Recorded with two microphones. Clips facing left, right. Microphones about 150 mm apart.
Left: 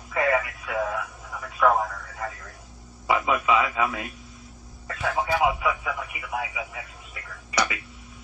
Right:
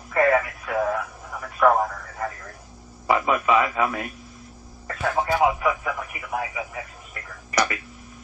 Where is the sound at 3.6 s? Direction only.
Centre (ahead or behind).